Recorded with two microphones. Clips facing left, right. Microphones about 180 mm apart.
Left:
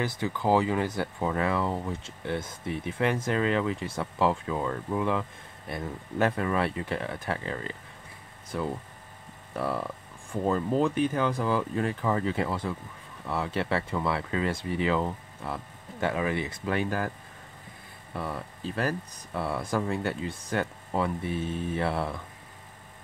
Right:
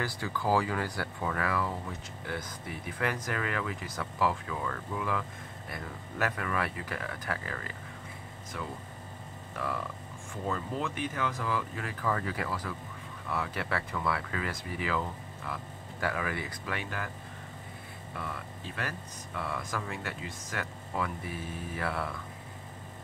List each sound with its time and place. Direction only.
0.0 s speech: 20° left (ahead or behind)
18.1 s speech: 35° left (ahead or behind)